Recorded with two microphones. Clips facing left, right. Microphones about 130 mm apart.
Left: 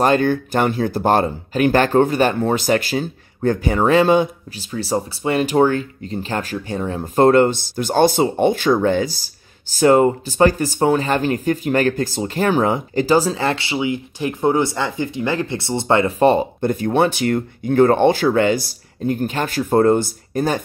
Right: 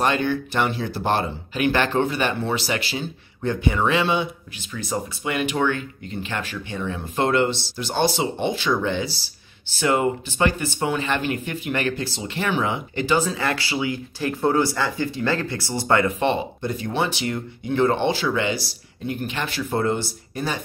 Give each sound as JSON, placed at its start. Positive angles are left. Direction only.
{"t": 0.0, "sound": "speech", "side_deg": 45}
{"t": 16.2, "sound": "speech", "side_deg": 45}